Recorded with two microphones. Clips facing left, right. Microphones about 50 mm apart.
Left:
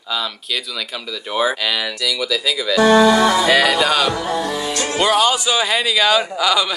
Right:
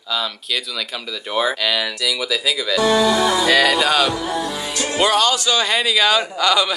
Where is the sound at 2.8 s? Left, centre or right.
Left.